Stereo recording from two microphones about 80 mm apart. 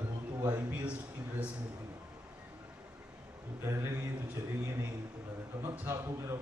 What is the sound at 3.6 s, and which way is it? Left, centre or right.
Speech, right.